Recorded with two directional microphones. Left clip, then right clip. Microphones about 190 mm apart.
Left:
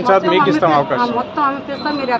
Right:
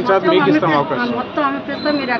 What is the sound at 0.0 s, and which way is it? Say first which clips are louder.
Speech: left 1 dB; 65° left (ahead or behind).